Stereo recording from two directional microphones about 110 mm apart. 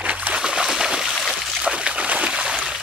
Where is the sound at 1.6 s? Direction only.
10° right (ahead or behind).